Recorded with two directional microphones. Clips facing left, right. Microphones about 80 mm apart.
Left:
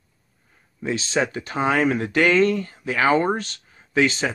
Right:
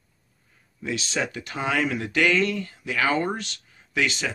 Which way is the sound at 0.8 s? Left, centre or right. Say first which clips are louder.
Left 5 dB; left.